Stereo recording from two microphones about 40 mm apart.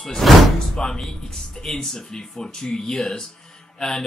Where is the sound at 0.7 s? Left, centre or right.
Centre.